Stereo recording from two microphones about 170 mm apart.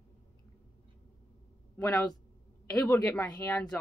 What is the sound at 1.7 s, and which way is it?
A woman's voice, 10° left (ahead or behind).